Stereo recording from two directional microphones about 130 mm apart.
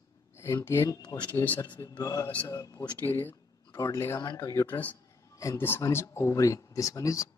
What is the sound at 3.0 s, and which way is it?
Speech, 15° left (ahead or behind).